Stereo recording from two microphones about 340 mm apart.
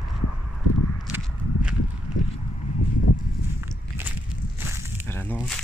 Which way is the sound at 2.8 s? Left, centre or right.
Left.